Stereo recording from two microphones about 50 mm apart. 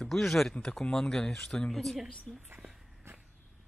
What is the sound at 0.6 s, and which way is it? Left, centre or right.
Speech, centre.